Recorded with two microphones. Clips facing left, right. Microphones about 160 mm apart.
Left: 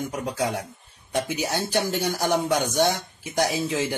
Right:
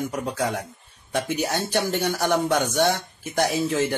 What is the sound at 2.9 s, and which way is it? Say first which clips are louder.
Speech: right 2 dB; 60° right (ahead or behind).